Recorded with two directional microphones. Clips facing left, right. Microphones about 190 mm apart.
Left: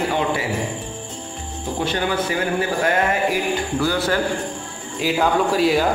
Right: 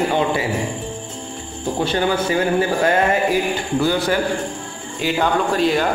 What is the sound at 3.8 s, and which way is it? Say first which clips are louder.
Speech: right 4 dB; 20° right (ahead or behind).